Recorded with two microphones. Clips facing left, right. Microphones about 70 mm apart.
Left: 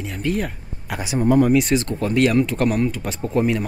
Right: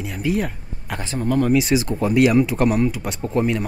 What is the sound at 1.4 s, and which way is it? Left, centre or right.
Speech, centre.